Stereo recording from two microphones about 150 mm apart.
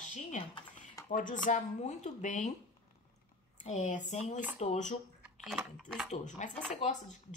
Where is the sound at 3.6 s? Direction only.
50° left (ahead or behind).